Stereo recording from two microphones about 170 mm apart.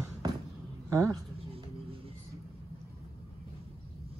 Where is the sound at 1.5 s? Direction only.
35° right (ahead or behind).